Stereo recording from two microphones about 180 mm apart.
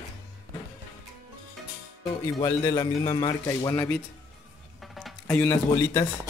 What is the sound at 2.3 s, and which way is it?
A man's voice, 20° left (ahead or behind).